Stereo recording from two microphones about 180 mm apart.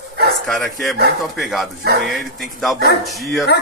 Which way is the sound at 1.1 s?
Centre (ahead or behind).